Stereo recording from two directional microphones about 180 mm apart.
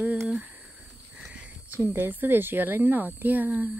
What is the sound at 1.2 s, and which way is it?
Speech, 5° right (ahead or behind).